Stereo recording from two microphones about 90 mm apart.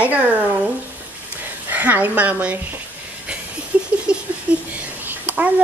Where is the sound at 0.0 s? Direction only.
15° right (ahead or behind).